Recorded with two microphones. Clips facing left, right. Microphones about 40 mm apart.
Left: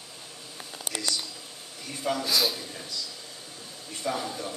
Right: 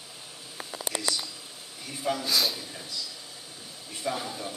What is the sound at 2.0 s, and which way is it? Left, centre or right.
Speech, centre.